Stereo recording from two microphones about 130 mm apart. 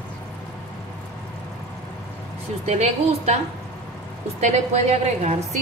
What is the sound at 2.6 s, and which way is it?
Speech, 60° right (ahead or behind).